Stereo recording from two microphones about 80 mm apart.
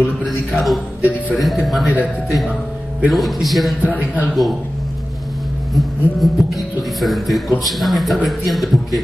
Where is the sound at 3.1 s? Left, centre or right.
Centre.